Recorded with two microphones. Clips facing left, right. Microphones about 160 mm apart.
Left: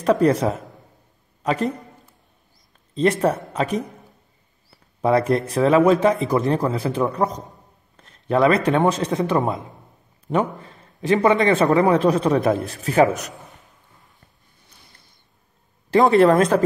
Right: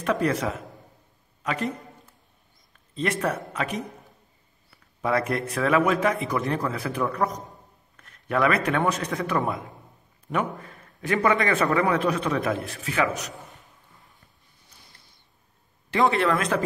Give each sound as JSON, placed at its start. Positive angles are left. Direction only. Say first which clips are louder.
{"t": 0.0, "sound": "a man's voice", "louder": "left 7 dB", "side_deg": 35}
{"t": 2.9, "sound": "speech", "louder": "left 8 dB", "side_deg": 30}
{"t": 4.6, "sound": "a sound", "louder": "left 7 dB", "side_deg": 30}
{"t": 5.5, "sound": "a man's voice", "louder": "left 7 dB", "side_deg": 30}
{"t": 15.9, "sound": "speech", "louder": "left 8 dB", "side_deg": 40}